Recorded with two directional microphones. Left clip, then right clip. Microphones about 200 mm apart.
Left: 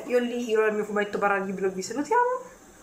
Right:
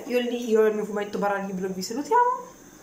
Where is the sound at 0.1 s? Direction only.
Centre (ahead or behind).